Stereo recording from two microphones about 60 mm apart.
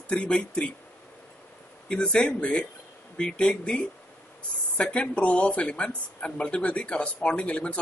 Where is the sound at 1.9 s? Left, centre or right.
Centre.